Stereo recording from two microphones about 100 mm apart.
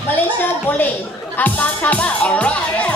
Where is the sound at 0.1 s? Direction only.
15° left (ahead or behind).